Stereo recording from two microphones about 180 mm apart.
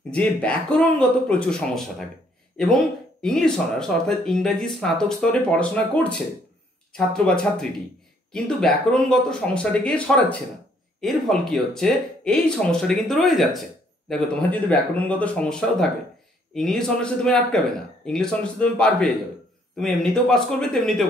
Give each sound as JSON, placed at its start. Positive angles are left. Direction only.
{"t": 0.1, "sound": "speech", "side_deg": 5}